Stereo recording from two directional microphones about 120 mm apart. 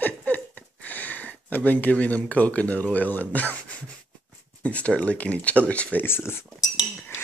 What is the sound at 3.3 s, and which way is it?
Speech, 10° left (ahead or behind).